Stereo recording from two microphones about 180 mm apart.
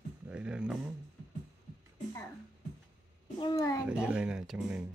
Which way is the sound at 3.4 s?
20° left (ahead or behind).